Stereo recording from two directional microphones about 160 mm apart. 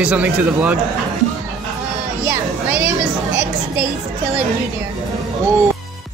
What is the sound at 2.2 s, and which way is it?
Music, 10° right (ahead or behind).